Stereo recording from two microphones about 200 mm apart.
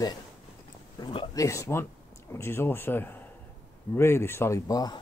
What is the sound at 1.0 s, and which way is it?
A man's voice, 25° left (ahead or behind).